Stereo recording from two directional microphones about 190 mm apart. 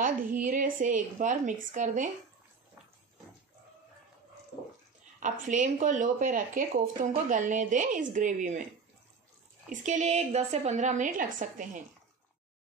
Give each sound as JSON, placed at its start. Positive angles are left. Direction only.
{"t": 0.0, "sound": "speech", "side_deg": -45}
{"t": 5.2, "sound": "speech", "side_deg": -40}
{"t": 9.7, "sound": "a woman's voice", "side_deg": -40}